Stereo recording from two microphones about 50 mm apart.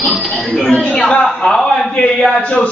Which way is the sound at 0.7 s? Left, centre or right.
Centre.